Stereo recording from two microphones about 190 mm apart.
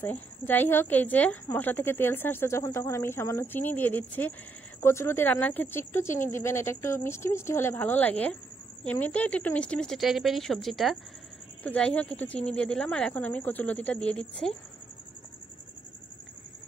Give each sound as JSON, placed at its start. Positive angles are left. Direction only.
{"t": 0.0, "sound": "a woman's voice", "side_deg": 10}